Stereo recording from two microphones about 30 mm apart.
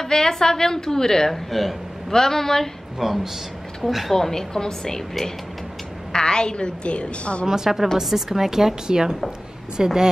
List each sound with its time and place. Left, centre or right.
0.0 s a woman's voice: centre
1.3 s a man's voice: centre
2.1 s a woman's voice: centre
3.0 s a woman's voice: centre
4.1 s a woman's voice: centre
6.1 s a woman's voice: left
7.4 s a woman's voice: centre